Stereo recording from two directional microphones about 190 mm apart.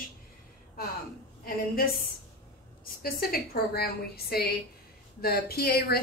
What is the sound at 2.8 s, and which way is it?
A woman's voice, 50° left (ahead or behind).